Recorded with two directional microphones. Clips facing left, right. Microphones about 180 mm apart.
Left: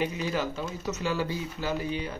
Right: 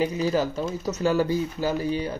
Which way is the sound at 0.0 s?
35° right (ahead or behind).